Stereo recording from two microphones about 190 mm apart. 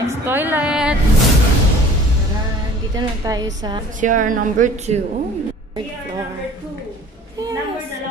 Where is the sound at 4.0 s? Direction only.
45° right (ahead or behind).